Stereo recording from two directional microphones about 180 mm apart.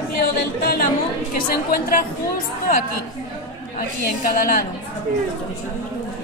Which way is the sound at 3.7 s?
50° left (ahead or behind).